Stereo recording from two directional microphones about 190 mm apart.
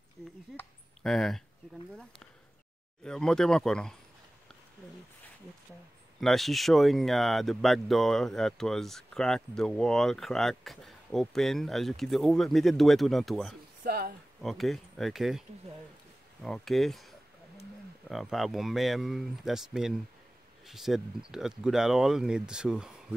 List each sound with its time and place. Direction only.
0.6 s a sound: centre (ahead or behind)
3.0 s speech: 5° left (ahead or behind)
6.2 s speech: centre (ahead or behind)
13.8 s speech: 55° right (ahead or behind)
14.4 s speech: centre (ahead or behind)
16.4 s speech: centre (ahead or behind)